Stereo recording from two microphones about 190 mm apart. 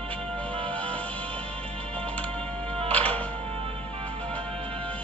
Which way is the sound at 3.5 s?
30° right (ahead or behind).